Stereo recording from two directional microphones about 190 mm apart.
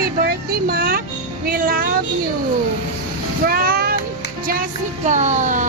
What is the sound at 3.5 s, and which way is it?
Speech, 50° right (ahead or behind).